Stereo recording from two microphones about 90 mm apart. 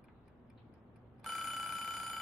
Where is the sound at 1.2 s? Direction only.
Centre (ahead or behind).